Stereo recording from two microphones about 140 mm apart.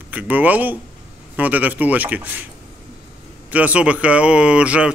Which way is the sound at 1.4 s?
10° right (ahead or behind).